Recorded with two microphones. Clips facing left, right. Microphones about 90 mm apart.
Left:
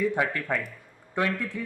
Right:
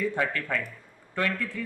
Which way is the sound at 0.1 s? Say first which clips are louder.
Left 1 dB; 15° left (ahead or behind).